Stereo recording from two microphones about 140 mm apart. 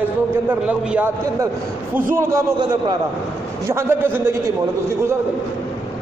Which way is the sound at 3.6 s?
15° right (ahead or behind).